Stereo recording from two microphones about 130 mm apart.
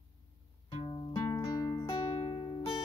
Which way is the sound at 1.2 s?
25° left (ahead or behind).